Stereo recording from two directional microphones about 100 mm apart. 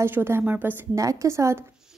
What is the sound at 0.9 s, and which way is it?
Speech, 35° right (ahead or behind).